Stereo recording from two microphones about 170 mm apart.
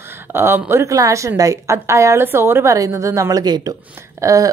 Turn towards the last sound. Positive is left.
turn(degrees=-20)  # may be behind; listen again after turning